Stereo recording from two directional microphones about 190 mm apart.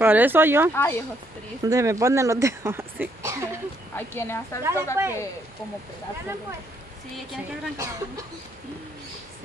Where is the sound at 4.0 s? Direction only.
15° left (ahead or behind).